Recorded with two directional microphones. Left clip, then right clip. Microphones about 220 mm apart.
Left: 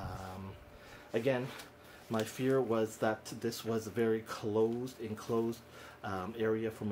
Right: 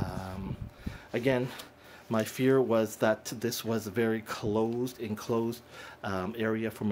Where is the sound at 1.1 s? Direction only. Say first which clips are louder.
Right 4 dB; 50° right (ahead or behind).